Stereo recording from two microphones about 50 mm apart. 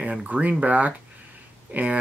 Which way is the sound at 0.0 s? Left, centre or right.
Right.